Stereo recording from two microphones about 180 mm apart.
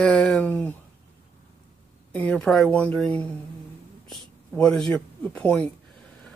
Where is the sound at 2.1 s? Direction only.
5° left (ahead or behind).